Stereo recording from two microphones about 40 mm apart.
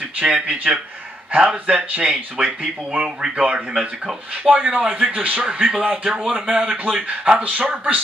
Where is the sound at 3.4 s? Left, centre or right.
Right.